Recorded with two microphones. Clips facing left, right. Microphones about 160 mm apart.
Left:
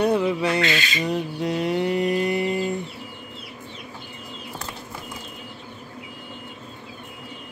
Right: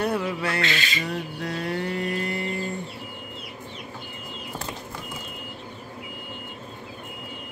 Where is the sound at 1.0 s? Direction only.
20° left (ahead or behind).